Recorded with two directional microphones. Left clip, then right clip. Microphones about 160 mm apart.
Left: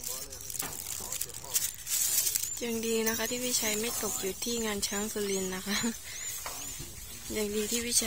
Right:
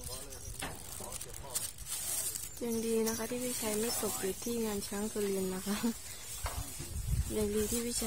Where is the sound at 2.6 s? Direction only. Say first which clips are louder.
Left 2 dB; centre (ahead or behind).